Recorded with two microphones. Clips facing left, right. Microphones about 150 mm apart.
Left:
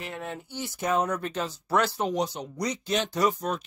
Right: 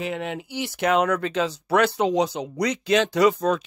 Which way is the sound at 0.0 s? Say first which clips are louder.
Right 7 dB; 90° right.